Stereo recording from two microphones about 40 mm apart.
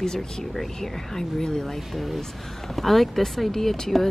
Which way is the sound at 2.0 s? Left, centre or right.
Centre.